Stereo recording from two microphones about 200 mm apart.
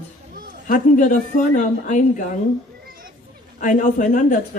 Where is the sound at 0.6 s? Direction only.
40° left (ahead or behind).